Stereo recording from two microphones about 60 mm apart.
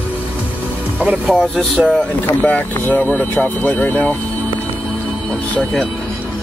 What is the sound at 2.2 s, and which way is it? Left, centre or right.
Speech, left.